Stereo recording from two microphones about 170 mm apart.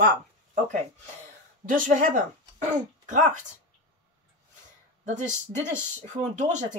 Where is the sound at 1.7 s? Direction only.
50° right (ahead or behind).